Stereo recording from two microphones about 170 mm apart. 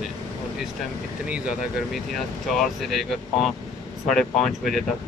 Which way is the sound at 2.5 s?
Centre (ahead or behind).